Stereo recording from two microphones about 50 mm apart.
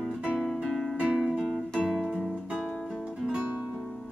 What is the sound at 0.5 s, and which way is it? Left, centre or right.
Music, centre.